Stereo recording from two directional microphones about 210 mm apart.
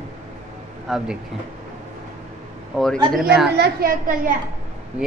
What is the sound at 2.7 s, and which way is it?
Speech, centre (ahead or behind).